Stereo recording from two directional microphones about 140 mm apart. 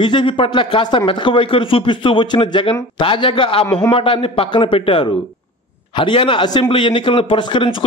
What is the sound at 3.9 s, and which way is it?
A man's voice, 40° left (ahead or behind).